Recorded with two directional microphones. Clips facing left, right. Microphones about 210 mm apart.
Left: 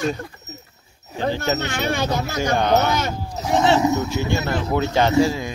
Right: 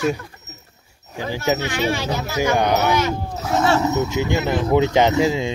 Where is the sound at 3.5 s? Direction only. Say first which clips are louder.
Left 1 dB; 15° left (ahead or behind).